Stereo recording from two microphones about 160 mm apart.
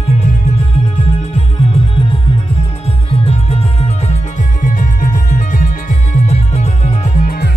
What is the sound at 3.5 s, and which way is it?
Music, 45° left (ahead or behind).